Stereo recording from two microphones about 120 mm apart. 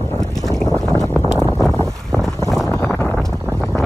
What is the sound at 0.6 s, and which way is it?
Boat, 5° left (ahead or behind).